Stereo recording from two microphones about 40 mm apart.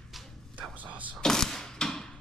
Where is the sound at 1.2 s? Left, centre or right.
Centre.